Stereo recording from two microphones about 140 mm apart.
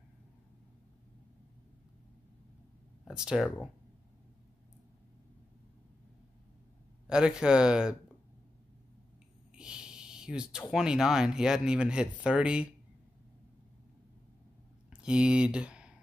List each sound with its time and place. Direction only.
3.1 s speech: 5° right (ahead or behind)
7.1 s speech: 5° right (ahead or behind)
9.6 s a sound: 5° right (ahead or behind)
10.7 s speech: 5° right (ahead or behind)
14.9 s speech: 5° right (ahead or behind)